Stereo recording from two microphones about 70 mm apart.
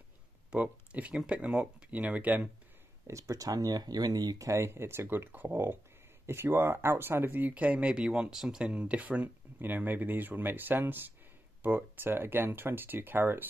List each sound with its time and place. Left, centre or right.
0.5 s speech: centre
3.1 s speech: right
4.5 s speech: right
6.2 s speech: right